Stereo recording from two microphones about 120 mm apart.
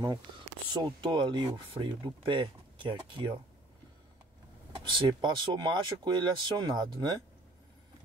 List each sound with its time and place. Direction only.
0.7 s speech: 40° right (ahead or behind)
4.7 s speech: 45° right (ahead or behind)